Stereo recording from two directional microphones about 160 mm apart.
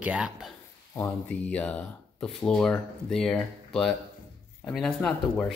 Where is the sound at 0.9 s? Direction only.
10° left (ahead or behind).